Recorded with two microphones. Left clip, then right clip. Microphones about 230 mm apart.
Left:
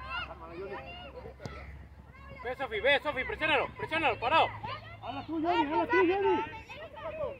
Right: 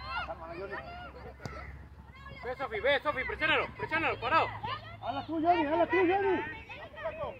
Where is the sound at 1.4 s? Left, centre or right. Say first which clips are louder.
Right 3 dB; centre.